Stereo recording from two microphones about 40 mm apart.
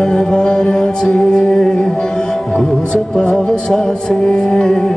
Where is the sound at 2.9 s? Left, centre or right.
Left.